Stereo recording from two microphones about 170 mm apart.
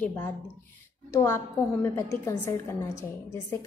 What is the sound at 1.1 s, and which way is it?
A woman's voice, 15° left (ahead or behind).